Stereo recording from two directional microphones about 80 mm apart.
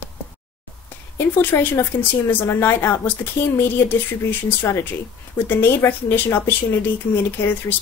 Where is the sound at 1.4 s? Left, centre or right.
Left.